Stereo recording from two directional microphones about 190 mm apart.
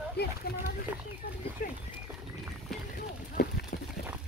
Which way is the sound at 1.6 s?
45° left (ahead or behind).